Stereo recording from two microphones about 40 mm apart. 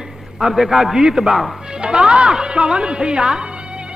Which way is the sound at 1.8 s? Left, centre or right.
Right.